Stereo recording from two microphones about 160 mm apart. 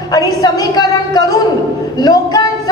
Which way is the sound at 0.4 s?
25° left (ahead or behind).